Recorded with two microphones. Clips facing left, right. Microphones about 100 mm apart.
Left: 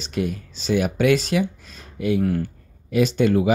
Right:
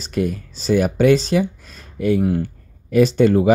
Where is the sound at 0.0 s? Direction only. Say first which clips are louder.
Right 4 dB; 45° right (ahead or behind).